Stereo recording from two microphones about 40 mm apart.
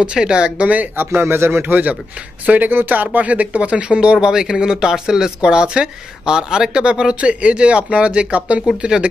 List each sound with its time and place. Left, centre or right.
0.0 s speech: right
0.9 s speech: right
1.7 s speech: right
2.7 s speech: right